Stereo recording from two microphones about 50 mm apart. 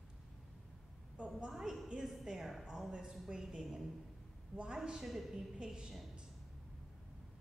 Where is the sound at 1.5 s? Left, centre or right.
Centre.